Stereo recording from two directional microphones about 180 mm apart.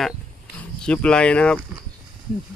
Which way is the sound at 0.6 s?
5° left (ahead or behind).